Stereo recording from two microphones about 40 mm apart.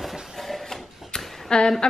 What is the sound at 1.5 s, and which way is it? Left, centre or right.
Speech, left.